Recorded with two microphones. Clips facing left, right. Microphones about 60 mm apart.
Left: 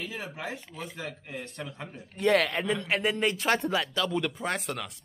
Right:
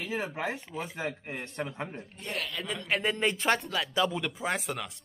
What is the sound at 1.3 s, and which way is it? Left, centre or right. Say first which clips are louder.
Speech: right 2 dB; right.